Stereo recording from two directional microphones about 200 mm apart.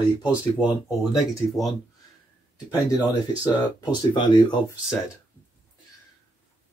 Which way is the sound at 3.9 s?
20° left (ahead or behind).